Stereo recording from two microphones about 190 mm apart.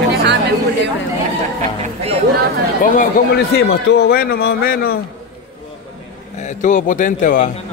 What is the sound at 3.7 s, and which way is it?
Speech, 60° left (ahead or behind).